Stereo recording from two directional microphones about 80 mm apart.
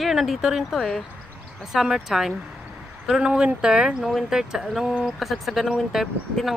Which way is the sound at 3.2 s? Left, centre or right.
Centre.